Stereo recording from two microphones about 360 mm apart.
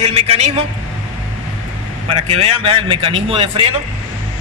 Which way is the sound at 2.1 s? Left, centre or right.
Centre.